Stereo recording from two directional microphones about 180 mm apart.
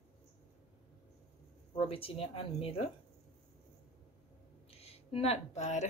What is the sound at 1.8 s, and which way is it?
A woman's voice, 30° left (ahead or behind).